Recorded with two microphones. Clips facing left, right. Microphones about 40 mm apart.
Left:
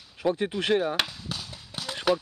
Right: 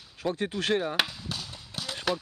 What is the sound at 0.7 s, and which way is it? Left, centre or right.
Speech, centre.